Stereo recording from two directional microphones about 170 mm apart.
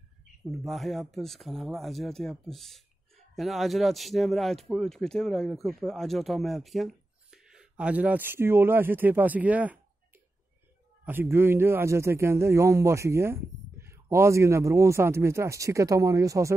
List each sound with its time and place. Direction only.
0.5 s speech: centre (ahead or behind)
11.1 s a man's voice: 15° right (ahead or behind)